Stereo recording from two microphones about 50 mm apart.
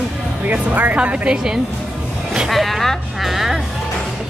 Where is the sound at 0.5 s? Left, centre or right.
Right.